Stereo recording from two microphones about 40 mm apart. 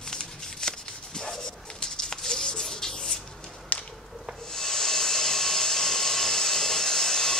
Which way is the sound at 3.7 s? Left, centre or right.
Left.